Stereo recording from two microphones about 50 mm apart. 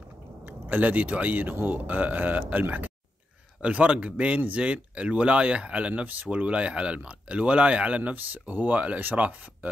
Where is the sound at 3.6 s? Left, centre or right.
Right.